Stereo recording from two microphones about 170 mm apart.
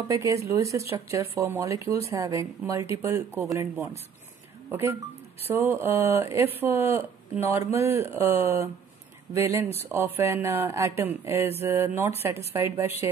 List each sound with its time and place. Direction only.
0.1 s speech: 20° right (ahead or behind)
4.6 s speech: 10° right (ahead or behind)